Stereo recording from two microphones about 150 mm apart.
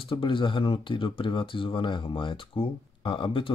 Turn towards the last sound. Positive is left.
turn(degrees=35)  # may be behind; listen again after turning